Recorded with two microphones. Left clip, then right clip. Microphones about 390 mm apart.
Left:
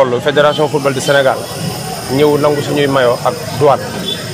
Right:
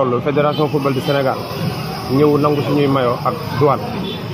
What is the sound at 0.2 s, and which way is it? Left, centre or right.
Speech, left.